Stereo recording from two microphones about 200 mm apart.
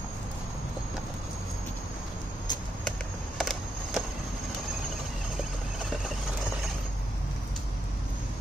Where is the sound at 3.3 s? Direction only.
Centre (ahead or behind).